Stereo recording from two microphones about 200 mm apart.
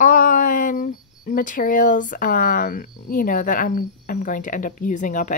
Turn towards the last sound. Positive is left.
turn(degrees=40)  # may be behind; listen again after turning